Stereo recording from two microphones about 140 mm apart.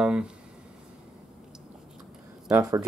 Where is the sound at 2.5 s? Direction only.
25° right (ahead or behind).